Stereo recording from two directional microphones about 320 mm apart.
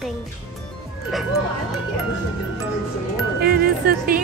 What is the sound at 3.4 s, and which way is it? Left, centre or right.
Speech, right.